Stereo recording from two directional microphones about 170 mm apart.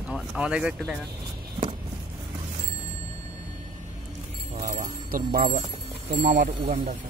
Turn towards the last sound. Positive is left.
turn(degrees=-45)  # may be behind; listen again after turning